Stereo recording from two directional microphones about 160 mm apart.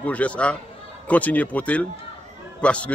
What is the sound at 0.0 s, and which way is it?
Speech, 10° left (ahead or behind).